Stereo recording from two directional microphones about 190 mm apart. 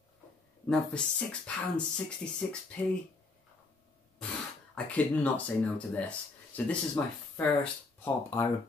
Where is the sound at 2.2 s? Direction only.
10° left (ahead or behind).